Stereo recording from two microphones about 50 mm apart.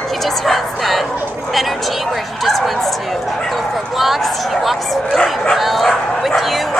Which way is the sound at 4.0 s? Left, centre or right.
Centre.